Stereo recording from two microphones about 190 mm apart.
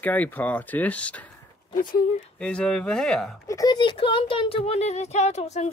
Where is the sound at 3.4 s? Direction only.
20° left (ahead or behind).